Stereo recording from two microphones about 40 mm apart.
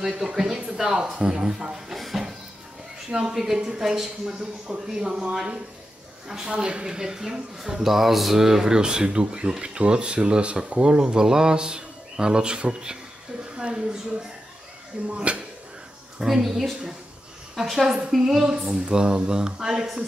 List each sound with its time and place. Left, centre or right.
0.2 s a man's voice: centre
2.0 s music: centre
3.3 s a man's voice: centre
6.2 s a man's voice: centre
13.6 s a sound: centre
15.1 s speech: right
16.2 s a man's voice: centre
18.9 s speech: right